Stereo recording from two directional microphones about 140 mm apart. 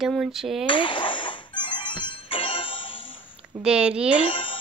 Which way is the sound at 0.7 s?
35° left (ahead or behind).